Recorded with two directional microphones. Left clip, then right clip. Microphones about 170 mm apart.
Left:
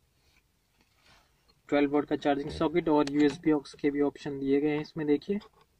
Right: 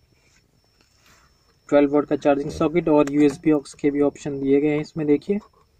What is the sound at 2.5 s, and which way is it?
Speech, 15° right (ahead or behind).